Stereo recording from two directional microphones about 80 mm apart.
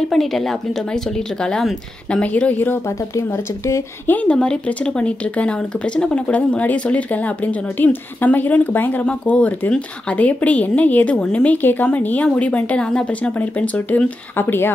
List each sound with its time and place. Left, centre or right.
0.1 s a woman's voice: centre; by 2.8 s left
3.2 s speech: left
4.1 s speech: centre